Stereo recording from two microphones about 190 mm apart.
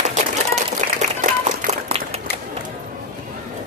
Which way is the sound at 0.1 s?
40° right (ahead or behind).